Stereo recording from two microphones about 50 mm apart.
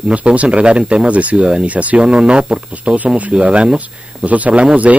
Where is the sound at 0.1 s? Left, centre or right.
Right.